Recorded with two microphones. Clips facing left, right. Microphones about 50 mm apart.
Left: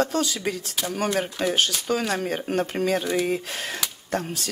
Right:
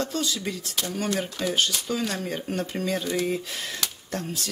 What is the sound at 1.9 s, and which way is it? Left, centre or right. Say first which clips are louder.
Speech: left 4 dB; left.